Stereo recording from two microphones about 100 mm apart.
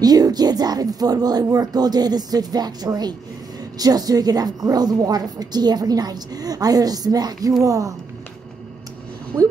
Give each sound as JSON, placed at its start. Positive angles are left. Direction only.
{"t": 0.0, "sound": "a woman's voice", "side_deg": -40}